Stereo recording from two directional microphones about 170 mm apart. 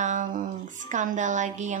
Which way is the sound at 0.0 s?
50° right (ahead or behind).